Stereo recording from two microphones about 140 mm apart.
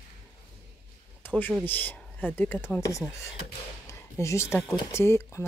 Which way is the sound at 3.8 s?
20° left (ahead or behind).